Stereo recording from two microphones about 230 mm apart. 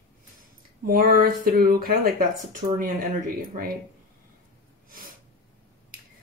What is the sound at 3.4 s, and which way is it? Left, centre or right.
Speech, right.